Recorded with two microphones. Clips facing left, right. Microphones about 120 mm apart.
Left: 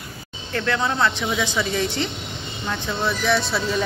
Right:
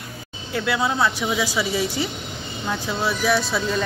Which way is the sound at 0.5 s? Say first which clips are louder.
Even; 10° right (ahead or behind).